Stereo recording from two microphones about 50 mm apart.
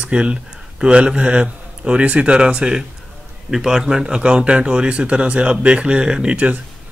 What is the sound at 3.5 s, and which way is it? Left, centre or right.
Speech, centre.